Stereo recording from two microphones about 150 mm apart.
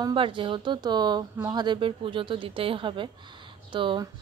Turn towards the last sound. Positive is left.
turn(degrees=-35)  # may be behind; listen again after turning